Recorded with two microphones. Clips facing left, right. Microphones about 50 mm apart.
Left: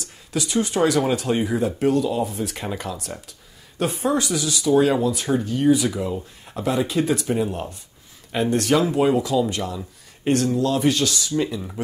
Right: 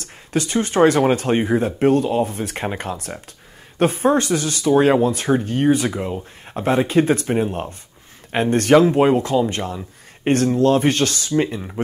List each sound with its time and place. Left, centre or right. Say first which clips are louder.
0.0 s speech: right 4 dB; right